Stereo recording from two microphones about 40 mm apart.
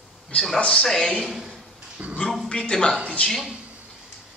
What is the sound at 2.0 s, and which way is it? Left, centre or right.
Speech, right.